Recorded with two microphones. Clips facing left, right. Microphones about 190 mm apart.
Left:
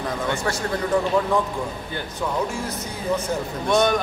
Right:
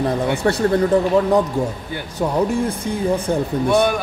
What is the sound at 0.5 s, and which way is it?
Speech, 30° right (ahead or behind).